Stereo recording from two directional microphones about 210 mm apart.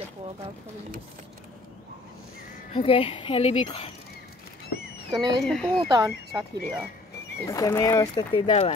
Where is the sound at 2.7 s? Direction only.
25° left (ahead or behind).